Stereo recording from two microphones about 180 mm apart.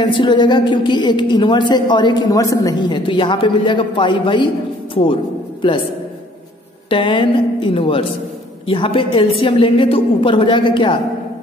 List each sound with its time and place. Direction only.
0.0 s a woman's voice: 25° left (ahead or behind)
6.9 s a woman's voice: 25° left (ahead or behind)